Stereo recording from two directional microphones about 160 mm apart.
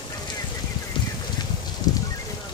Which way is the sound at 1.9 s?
20° left (ahead or behind).